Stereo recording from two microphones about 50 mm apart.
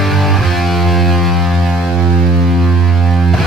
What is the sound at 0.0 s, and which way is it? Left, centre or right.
Music, centre.